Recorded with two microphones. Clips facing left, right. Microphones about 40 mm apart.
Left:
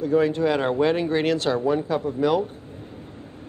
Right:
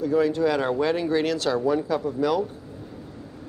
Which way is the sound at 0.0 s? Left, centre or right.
Left.